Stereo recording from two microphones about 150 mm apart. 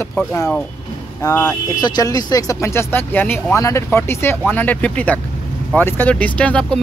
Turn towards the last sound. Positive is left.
turn(degrees=10)  # may be behind; listen again after turning